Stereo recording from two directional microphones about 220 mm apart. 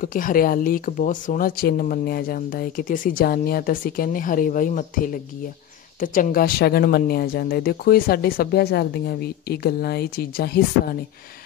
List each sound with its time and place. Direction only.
0.0 s speech: 40° left (ahead or behind)